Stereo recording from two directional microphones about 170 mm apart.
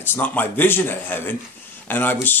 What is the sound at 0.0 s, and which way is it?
Speech, 10° left (ahead or behind).